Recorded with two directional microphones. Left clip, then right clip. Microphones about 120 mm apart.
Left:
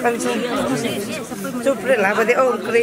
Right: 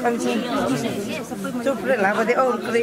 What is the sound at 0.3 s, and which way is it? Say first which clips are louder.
A man's voice: left 2 dB; centre (ahead or behind).